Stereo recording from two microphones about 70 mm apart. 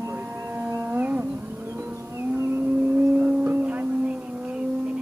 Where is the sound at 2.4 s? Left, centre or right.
Right.